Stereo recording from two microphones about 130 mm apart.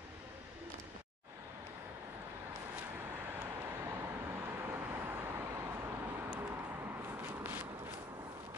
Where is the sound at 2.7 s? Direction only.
15° right (ahead or behind).